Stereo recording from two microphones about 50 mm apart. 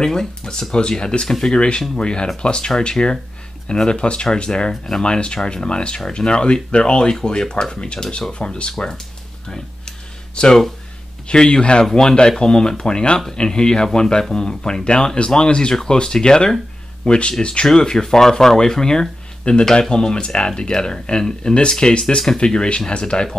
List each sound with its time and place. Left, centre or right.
0.0 s speech: centre
9.5 s a sound: centre
11.2 s speech: centre